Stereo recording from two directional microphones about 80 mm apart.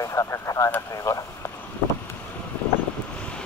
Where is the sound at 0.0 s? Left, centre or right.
Left.